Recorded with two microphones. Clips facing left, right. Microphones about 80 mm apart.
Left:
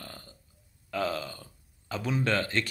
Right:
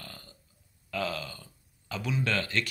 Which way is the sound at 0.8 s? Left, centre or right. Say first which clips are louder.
Left 2 dB; left.